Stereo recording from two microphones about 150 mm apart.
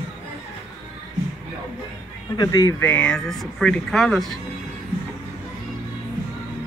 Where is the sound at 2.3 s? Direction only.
25° left (ahead or behind).